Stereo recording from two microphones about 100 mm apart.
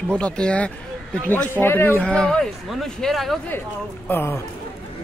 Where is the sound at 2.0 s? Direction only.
10° left (ahead or behind).